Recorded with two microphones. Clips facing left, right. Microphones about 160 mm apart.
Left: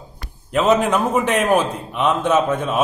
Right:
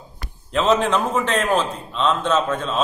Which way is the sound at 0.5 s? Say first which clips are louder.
Left 2 dB; 10° left (ahead or behind).